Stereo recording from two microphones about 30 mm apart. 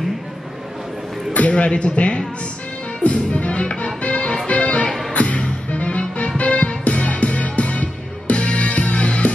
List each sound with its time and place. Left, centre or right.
1.3 s a man's voice: left
3.0 s music: left